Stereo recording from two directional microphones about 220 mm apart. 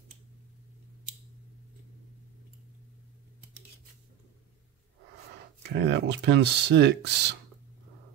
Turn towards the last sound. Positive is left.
turn(degrees=-50)  # may be behind; listen again after turning